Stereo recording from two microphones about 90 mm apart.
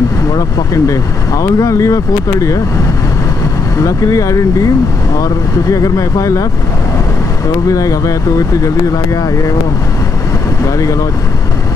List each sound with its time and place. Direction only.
0.8 s speech: 40° left (ahead or behind)
3.8 s speech: 40° left (ahead or behind)
7.6 s speech: 40° left (ahead or behind)
10.8 s speech: 40° left (ahead or behind)